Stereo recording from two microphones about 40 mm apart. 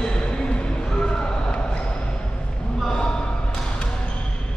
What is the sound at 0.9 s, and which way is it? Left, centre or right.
Music, centre.